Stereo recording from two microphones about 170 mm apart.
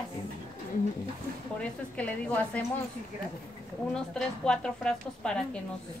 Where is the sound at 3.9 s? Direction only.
5° left (ahead or behind).